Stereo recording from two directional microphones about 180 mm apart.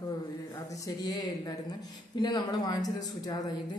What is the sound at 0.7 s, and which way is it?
A woman's voice, 20° left (ahead or behind).